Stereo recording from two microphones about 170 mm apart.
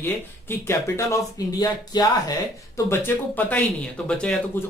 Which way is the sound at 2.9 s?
10° left (ahead or behind).